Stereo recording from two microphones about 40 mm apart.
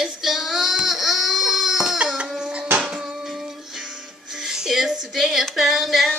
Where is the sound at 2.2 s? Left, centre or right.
Centre.